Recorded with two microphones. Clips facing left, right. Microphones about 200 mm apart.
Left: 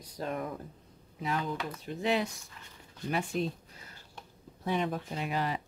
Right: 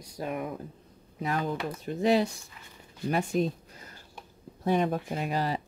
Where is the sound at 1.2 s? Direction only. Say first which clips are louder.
Right 3 dB; 45° right (ahead or behind).